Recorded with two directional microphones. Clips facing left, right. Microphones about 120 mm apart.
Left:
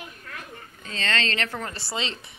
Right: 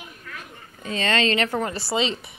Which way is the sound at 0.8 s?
15° right (ahead or behind).